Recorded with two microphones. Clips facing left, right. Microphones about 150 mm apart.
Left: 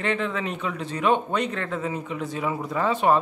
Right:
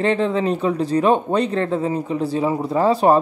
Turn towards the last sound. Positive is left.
turn(degrees=-35)  # may be behind; listen again after turning